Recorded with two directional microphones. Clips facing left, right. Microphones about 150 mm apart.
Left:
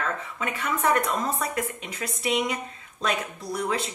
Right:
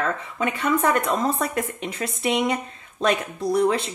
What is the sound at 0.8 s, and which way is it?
A woman's voice, 30° right (ahead or behind).